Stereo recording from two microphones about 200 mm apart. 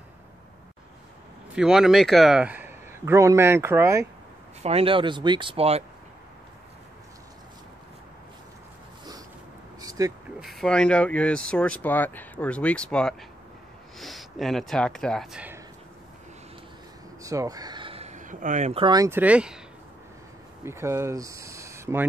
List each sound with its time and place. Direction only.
1.5 s speech: 5° right (ahead or behind)
4.6 s speech: 30° right (ahead or behind)
9.8 s a sound: 20° right (ahead or behind)
10.4 s speech: centre (ahead or behind)
17.2 s speech: 15° right (ahead or behind)
20.6 s speech: 15° right (ahead or behind)